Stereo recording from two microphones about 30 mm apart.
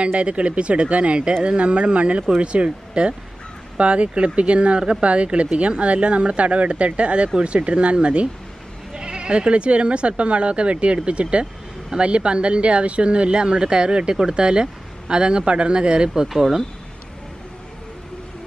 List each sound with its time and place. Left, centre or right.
0.0 s speech: right
8.9 s speech: right
16.3 s speech: centre